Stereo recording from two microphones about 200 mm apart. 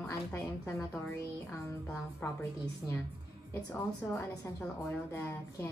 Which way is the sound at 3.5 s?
15° left (ahead or behind).